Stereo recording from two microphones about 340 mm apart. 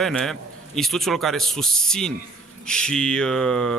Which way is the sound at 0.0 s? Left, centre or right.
Centre.